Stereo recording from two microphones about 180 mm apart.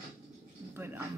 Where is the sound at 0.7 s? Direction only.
15° right (ahead or behind).